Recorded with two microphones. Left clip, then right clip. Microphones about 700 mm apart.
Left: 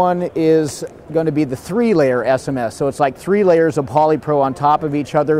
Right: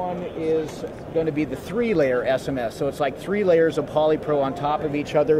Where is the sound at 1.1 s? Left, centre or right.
Left.